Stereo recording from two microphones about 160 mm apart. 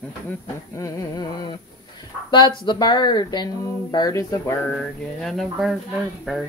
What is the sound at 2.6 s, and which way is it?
Speech, 30° left (ahead or behind).